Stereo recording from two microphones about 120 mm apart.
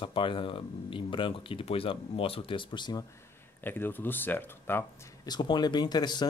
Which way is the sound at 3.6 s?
15° left (ahead or behind).